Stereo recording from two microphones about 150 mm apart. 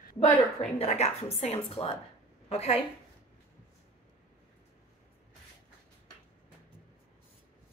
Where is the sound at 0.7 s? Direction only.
45° left (ahead or behind).